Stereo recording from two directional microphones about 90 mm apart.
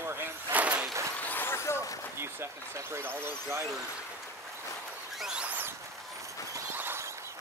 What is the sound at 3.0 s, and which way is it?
Speech, 25° right (ahead or behind).